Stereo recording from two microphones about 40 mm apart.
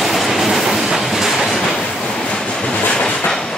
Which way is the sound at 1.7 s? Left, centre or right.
Left.